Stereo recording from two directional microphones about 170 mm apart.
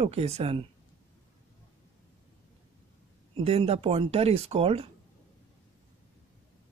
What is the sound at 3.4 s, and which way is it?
Speech, 35° right (ahead or behind).